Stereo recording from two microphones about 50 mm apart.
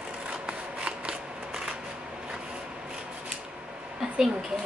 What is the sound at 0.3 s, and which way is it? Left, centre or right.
Scissors, centre.